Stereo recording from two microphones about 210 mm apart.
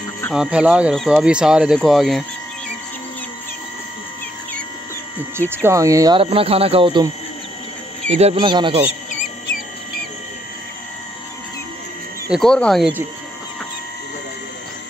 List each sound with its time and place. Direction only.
0.3 s speech: 5° right (ahead or behind)
5.5 s speech: 10° right (ahead or behind)
8.1 s speech: 25° right (ahead or behind)
12.3 s speech: 5° left (ahead or behind)